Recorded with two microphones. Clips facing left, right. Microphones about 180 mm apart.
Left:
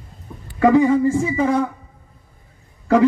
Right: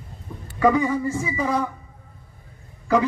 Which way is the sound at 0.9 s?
25° left (ahead or behind).